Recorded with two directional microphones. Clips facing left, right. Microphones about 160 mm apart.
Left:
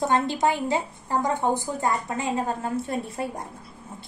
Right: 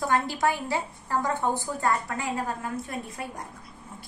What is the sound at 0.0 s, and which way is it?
A woman's voice, 20° left (ahead or behind).